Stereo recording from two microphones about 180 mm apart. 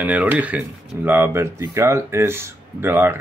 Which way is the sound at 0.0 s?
10° right (ahead or behind).